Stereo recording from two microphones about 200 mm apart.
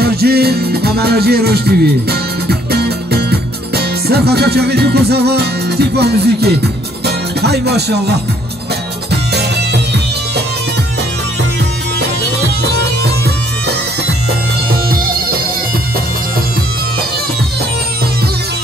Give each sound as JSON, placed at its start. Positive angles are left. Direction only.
{"t": 0.0, "sound": "music", "side_deg": -50}
{"t": 9.1, "sound": "music", "side_deg": -55}
{"t": 12.6, "sound": "music", "side_deg": -55}
{"t": 14.7, "sound": "music", "side_deg": -45}